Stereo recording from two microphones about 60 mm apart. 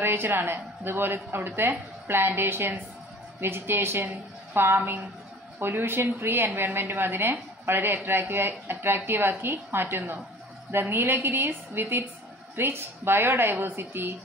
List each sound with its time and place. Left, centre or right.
0.0 s a woman's voice: right